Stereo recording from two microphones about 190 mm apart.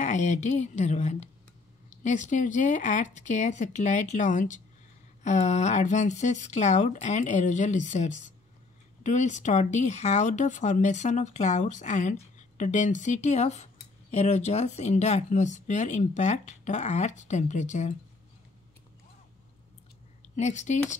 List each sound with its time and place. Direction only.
0.0 s speech: 40° left (ahead or behind)
20.3 s speech: 35° left (ahead or behind)